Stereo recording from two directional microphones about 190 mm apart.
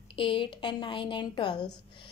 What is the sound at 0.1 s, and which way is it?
A woman's voice, 25° left (ahead or behind).